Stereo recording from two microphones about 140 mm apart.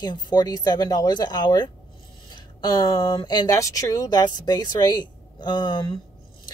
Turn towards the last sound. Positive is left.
turn(degrees=35)  # may be behind; listen again after turning